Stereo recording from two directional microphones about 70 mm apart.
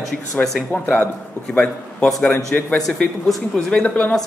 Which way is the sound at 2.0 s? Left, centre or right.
Centre.